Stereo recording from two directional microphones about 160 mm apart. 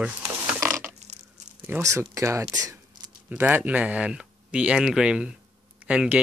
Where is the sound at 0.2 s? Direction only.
20° right (ahead or behind).